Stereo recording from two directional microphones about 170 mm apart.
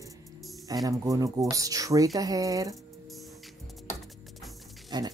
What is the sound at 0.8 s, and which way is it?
Speech, 20° right (ahead or behind).